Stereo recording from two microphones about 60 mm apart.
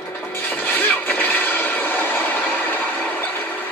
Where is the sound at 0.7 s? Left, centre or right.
Left.